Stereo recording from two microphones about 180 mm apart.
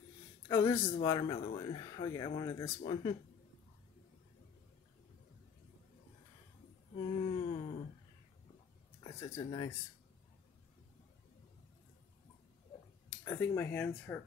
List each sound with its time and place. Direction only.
0.5 s speech: 15° left (ahead or behind)
1.0 s speech: 25° left (ahead or behind)
2.8 s speech: 30° left (ahead or behind)
7.1 s a sound: 30° left (ahead or behind)
9.0 s speech: 20° left (ahead or behind)
13.2 s speech: 15° left (ahead or behind)